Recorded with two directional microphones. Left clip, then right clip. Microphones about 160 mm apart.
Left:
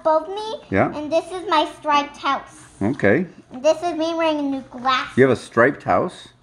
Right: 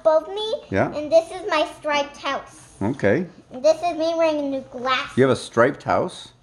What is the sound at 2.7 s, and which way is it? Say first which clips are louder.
Speech: left 2 dB; centre (ahead or behind).